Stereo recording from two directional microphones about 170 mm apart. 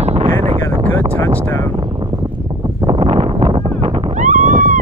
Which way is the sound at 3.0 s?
40° right (ahead or behind).